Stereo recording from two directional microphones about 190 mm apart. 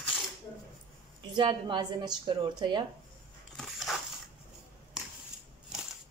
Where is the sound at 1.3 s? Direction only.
25° right (ahead or behind).